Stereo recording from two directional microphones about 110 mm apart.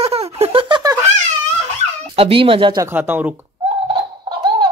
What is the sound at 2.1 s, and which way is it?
Speech, 60° right (ahead or behind).